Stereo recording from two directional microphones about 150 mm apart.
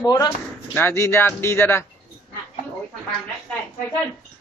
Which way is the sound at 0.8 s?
15° left (ahead or behind).